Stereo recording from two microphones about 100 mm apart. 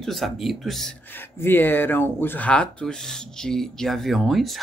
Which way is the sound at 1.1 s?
20° left (ahead or behind).